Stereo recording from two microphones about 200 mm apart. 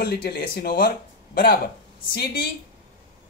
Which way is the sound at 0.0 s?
50° left (ahead or behind).